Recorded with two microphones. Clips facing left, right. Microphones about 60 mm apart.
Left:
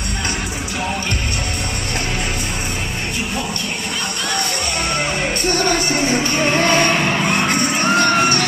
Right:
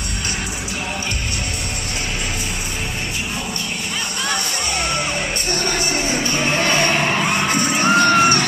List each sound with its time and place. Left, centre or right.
5.5 s music: left
7.0 s music: centre